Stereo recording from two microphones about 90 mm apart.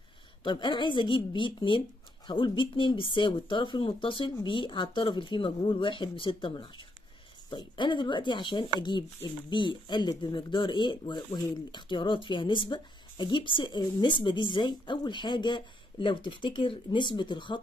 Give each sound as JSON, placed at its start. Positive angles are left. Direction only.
{"t": 0.4, "sound": "speech", "side_deg": 65}